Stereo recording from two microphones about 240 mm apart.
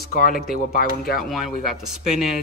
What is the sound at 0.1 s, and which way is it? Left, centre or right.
Speech, left.